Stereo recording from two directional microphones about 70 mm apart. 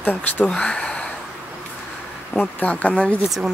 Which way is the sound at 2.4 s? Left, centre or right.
Left.